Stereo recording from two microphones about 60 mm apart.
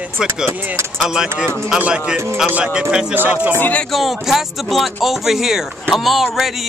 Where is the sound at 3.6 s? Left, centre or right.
Left.